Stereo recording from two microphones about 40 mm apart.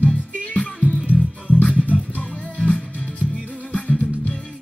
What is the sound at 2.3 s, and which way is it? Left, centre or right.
Music, left.